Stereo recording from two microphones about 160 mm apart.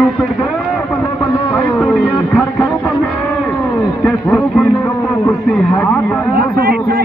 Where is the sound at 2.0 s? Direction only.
10° left (ahead or behind).